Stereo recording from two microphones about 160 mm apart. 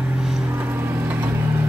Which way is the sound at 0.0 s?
5° right (ahead or behind).